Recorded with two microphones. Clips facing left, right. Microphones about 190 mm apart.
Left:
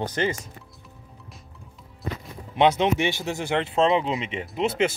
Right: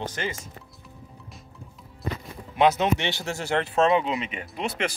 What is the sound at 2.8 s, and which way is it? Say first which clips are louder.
Speech: left 2 dB; 15° left (ahead or behind).